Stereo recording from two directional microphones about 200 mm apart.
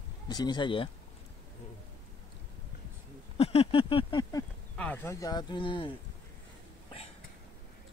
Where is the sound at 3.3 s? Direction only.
30° left (ahead or behind).